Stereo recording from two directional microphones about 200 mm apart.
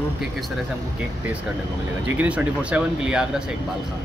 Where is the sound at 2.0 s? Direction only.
5° right (ahead or behind).